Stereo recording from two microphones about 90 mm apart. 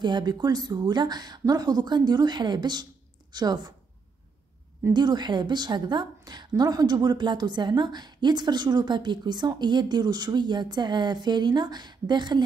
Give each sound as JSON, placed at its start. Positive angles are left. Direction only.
{"t": 0.0, "sound": "a woman's voice", "side_deg": -55}
{"t": 4.9, "sound": "a woman's voice", "side_deg": -55}